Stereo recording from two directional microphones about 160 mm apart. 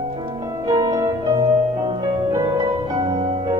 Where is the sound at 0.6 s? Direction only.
20° right (ahead or behind).